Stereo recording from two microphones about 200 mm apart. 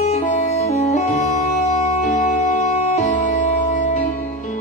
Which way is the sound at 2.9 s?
35° left (ahead or behind).